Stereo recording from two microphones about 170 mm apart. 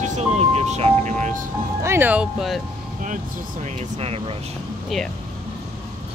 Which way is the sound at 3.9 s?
35° right (ahead or behind).